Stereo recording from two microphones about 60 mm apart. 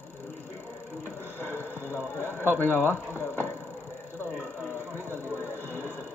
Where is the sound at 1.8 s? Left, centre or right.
Left.